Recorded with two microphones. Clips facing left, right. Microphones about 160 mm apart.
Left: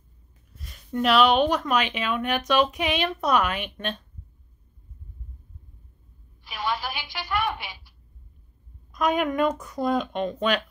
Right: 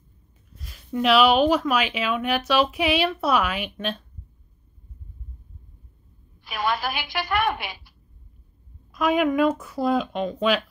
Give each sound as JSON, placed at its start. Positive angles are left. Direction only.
{"t": 0.6, "sound": "a woman's voice", "side_deg": 0}
{"t": 6.4, "sound": "a woman's voice", "side_deg": -70}
{"t": 8.9, "sound": "speech", "side_deg": -5}